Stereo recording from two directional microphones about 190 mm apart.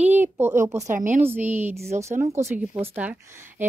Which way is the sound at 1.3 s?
10° right (ahead or behind).